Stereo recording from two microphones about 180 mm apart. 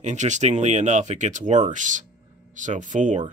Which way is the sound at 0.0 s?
40° right (ahead or behind).